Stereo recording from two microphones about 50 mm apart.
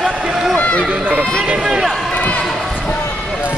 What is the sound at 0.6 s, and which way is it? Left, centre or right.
Run, left.